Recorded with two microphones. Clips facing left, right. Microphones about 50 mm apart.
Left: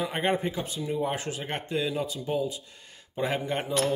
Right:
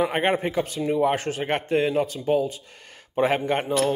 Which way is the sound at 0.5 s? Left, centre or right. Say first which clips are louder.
Right 7 dB; right.